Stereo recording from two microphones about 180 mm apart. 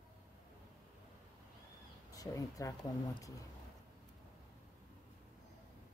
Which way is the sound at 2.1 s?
20° left (ahead or behind).